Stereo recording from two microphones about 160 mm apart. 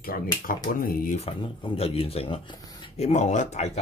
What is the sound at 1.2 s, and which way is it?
Speech, 35° left (ahead or behind).